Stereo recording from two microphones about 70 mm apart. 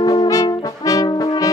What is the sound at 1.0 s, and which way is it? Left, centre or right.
Brass instrument, left.